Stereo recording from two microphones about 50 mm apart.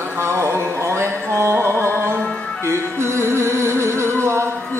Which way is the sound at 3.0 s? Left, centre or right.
Right.